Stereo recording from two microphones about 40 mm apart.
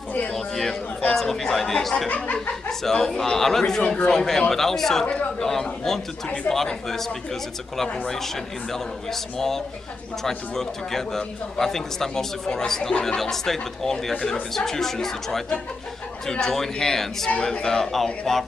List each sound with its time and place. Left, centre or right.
0.3 s a man's voice: centre
2.0 s chuckle: left
2.8 s a man's voice: centre
8.7 s a man's voice: centre